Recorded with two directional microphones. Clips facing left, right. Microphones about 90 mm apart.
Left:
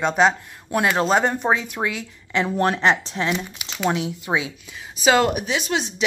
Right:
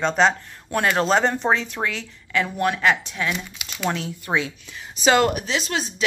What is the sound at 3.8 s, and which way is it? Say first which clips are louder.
Speech: left 3 dB; 10° left (ahead or behind).